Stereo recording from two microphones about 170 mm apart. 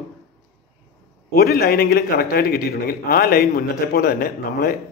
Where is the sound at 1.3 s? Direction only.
65° left (ahead or behind).